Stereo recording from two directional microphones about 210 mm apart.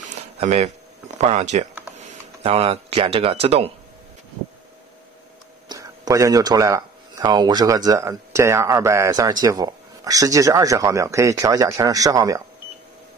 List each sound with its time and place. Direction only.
0.0 s a sound: 30° right (ahead or behind)
1.1 s speech: 35° right (ahead or behind)
5.7 s speech: 15° right (ahead or behind)